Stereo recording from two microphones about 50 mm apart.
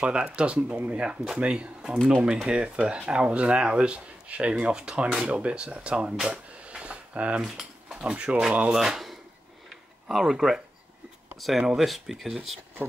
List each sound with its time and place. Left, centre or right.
0.0 s speech: right
6.2 s a sound: centre
7.4 s cutlery: centre
8.0 s speech: right
8.7 s speech: centre
10.2 s speech: centre